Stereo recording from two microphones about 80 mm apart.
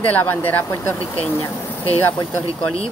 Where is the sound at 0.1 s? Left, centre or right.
Left.